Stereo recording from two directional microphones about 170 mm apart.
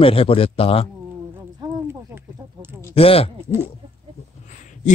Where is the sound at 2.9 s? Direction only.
35° left (ahead or behind).